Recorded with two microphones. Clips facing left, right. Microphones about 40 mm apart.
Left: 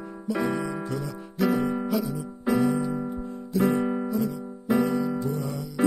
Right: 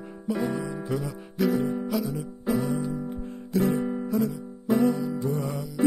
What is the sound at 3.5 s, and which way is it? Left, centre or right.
Guitar, left.